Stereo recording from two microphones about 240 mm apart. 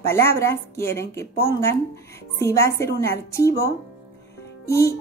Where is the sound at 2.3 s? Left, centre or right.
Centre.